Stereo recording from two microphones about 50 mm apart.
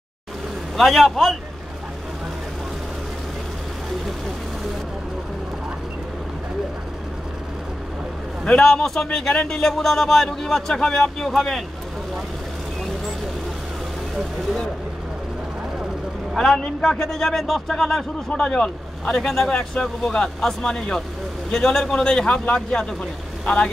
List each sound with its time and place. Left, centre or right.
0.7 s a man's voice: centre
8.5 s speech: centre
16.3 s a man's voice: centre
18.3 s speech: centre
22.4 s speech: left